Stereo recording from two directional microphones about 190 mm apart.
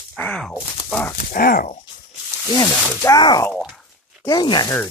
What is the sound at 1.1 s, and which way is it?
Speech, 50° left (ahead or behind).